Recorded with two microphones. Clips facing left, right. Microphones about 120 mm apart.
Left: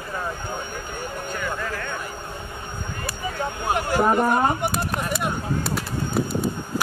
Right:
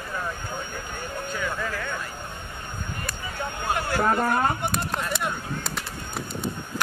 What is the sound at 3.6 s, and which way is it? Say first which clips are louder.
Speech: left 3 dB; 15° left (ahead or behind).